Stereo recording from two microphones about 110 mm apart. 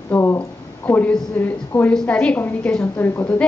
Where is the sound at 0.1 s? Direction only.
25° left (ahead or behind).